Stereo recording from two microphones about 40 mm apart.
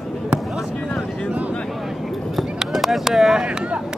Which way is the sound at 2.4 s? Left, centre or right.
Centre.